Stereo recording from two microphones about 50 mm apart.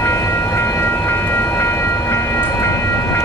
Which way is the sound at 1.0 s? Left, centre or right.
Left.